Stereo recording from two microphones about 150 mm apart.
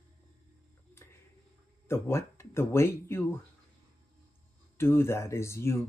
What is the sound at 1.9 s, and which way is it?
Speech, 20° left (ahead or behind).